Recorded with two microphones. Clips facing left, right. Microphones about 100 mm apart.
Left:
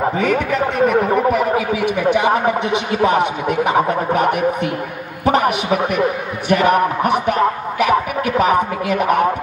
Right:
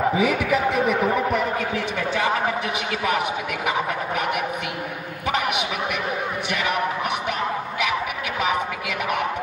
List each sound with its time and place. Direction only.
0.2 s a man's voice: 5° right (ahead or behind)
2.1 s speech: 20° left (ahead or behind)
2.9 s speech: 30° left (ahead or behind)